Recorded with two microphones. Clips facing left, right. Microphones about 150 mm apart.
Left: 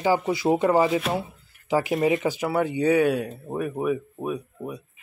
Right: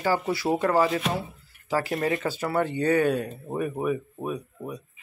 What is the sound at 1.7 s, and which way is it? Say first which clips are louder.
Speech: left 4 dB; 20° left (ahead or behind).